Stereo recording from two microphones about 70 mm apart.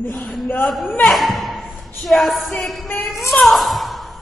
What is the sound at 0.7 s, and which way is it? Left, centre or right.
A woman's voice, centre.